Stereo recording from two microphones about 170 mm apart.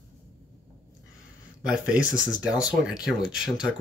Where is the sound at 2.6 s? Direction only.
5° right (ahead or behind).